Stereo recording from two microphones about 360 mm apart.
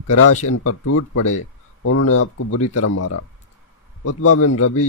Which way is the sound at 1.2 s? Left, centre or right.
Left.